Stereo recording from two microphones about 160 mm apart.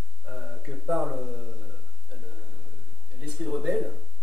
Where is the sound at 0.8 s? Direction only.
5° right (ahead or behind).